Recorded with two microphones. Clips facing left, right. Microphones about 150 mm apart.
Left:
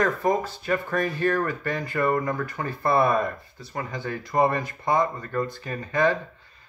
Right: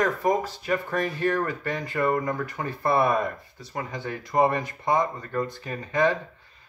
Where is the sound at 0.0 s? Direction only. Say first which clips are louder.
Even; 15° right (ahead or behind).